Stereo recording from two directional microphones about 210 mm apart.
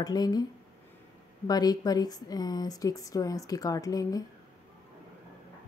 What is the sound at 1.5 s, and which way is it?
Speech, 20° left (ahead or behind).